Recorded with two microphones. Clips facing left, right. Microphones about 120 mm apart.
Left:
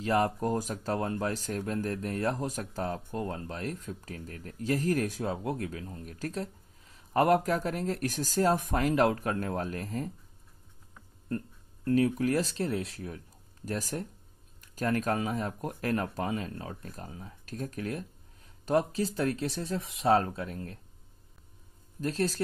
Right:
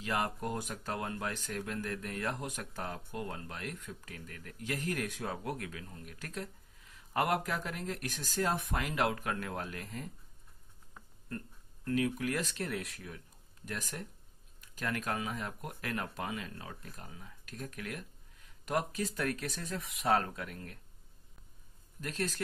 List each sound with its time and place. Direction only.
0.0 s speech: 35° left (ahead or behind)
11.2 s speech: 35° left (ahead or behind)
22.0 s speech: 35° left (ahead or behind)